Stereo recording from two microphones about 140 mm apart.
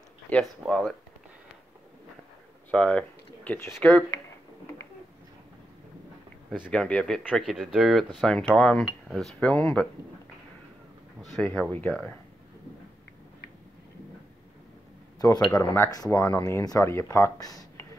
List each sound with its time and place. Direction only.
0.3 s speech: centre (ahead or behind)
2.7 s speech: 5° left (ahead or behind)
6.7 s speech: 5° left (ahead or behind)
11.4 s speech: 10° left (ahead or behind)
15.1 s speech: 30° left (ahead or behind)